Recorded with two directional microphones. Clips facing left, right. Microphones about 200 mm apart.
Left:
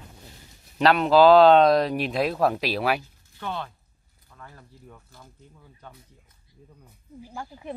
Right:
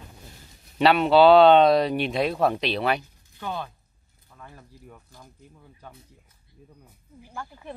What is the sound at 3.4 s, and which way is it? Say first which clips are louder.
Speech: even; 15° right (ahead or behind).